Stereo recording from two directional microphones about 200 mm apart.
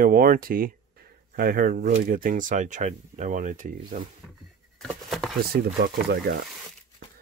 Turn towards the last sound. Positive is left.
turn(degrees=-50)  # may be behind; listen again after turning